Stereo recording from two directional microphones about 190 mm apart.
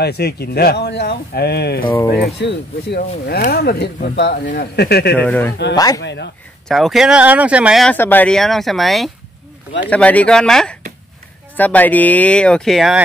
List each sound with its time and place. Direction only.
0.0 s speech: 60° left (ahead or behind)
5.1 s speech: 10° left (ahead or behind)
5.9 s speech: 65° left (ahead or behind)
6.7 s speech: centre (ahead or behind)